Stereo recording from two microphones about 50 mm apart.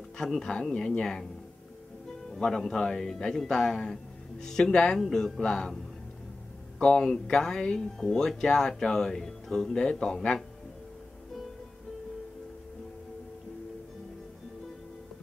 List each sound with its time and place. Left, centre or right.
0.4 s speech: centre
2.2 s music: centre
2.7 s speech: centre
5.4 s speech: centre
6.8 s speech: centre